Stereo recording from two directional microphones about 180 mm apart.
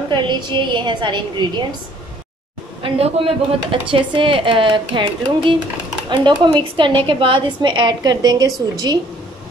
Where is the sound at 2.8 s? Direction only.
35° right (ahead or behind).